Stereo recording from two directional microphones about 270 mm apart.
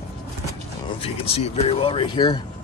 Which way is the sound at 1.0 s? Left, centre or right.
Left.